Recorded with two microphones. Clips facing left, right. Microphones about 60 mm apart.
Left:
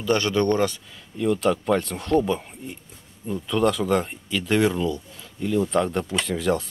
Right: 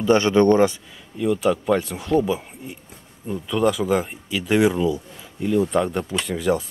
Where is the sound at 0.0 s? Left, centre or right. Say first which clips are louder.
Right 5 dB; right.